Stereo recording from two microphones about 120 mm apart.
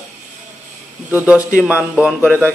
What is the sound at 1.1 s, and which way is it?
Speech, 15° right (ahead or behind).